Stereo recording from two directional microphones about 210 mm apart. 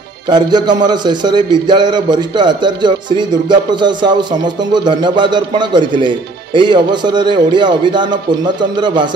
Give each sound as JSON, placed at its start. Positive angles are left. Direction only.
{"t": 0.3, "sound": "a man's voice", "side_deg": -20}